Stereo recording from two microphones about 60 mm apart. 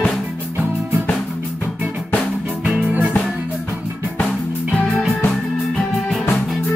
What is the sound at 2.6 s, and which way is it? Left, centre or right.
Music, right.